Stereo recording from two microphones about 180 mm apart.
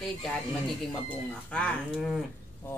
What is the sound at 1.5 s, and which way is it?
Speech, 5° left (ahead or behind).